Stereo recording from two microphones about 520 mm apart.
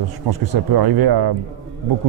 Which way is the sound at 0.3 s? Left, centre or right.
Right.